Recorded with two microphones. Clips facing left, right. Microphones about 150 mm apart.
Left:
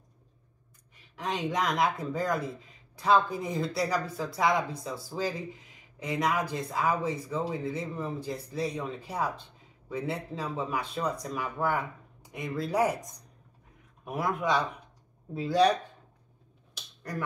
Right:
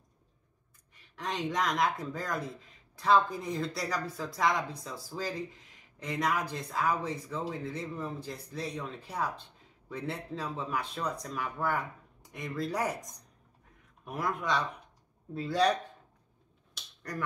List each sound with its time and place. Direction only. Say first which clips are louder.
0.9 s speech: left 2 dB; 5° left (ahead or behind)
14.0 s speech: left 4 dB; 5° left (ahead or behind)